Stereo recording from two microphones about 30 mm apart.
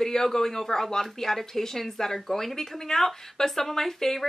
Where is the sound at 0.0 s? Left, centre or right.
Centre.